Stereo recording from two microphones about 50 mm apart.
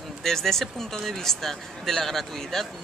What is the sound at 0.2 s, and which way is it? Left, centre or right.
Speech, centre.